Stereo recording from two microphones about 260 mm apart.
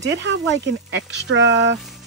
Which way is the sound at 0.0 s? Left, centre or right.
Right.